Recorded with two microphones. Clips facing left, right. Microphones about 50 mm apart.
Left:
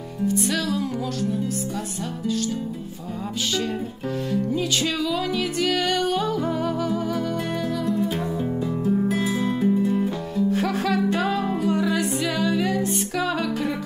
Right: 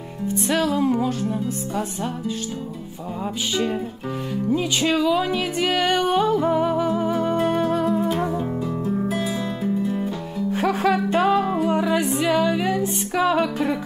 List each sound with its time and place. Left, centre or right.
0.3 s music: right
4.3 s music: centre
8.4 s music: centre
10.5 s music: centre